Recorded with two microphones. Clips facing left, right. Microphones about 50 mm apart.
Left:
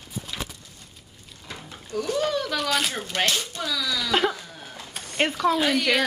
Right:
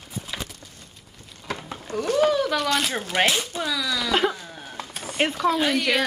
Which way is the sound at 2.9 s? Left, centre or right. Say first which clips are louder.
Right 3 dB; centre.